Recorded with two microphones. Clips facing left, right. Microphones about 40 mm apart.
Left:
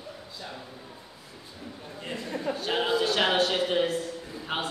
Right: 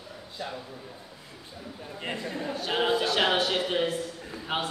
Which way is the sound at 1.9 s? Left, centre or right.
Right.